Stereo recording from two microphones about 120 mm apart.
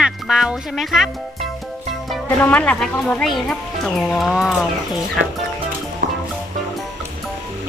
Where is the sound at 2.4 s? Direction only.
10° left (ahead or behind); by 5.0 s 5° right (ahead or behind).